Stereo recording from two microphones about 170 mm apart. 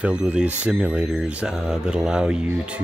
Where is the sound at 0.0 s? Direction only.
5° right (ahead or behind).